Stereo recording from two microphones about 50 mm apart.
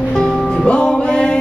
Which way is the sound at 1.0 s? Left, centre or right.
Centre.